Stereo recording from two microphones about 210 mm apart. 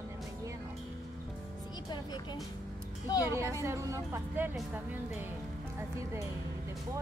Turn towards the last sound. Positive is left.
turn(degrees=-10)  # may be behind; listen again after turning